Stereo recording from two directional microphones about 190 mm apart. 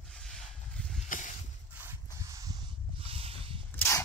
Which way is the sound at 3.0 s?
30° right (ahead or behind).